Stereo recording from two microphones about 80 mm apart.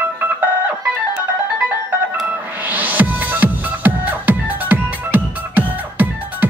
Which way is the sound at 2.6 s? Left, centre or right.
Right.